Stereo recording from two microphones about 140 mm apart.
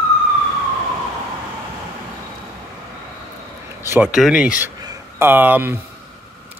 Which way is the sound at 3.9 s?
10° right (ahead or behind).